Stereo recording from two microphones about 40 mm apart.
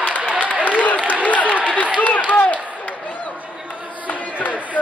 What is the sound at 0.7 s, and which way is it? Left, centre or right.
Applause, left.